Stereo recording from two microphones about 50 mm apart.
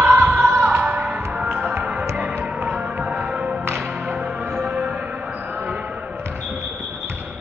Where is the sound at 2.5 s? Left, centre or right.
Right.